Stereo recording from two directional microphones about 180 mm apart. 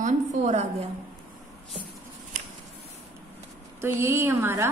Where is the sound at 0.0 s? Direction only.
40° right (ahead or behind).